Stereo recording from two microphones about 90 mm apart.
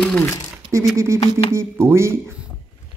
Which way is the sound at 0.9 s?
35° right (ahead or behind).